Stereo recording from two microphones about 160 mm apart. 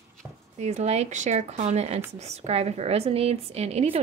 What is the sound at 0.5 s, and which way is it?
A woman's voice, 45° right (ahead or behind).